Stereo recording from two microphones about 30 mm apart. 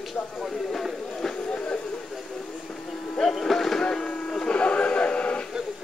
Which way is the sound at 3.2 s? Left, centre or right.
Centre.